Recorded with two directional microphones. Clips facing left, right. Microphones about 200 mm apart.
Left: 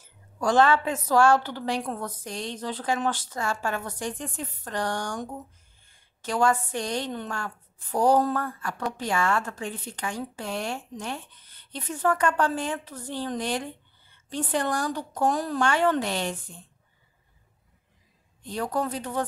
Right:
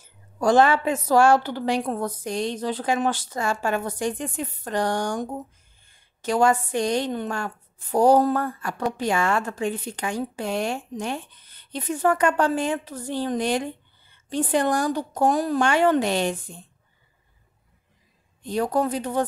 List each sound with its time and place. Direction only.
0.4 s a woman's voice: 15° right (ahead or behind)
18.4 s a woman's voice: 15° right (ahead or behind)